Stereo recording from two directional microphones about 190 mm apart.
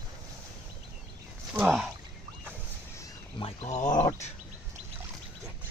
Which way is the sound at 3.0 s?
30° left (ahead or behind).